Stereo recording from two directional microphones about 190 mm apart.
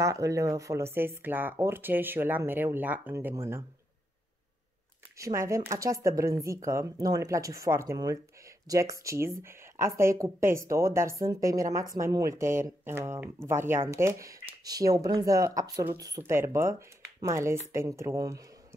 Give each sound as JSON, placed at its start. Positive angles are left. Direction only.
{"t": 0.0, "sound": "speech", "side_deg": -15}
{"t": 5.1, "sound": "speech", "side_deg": -15}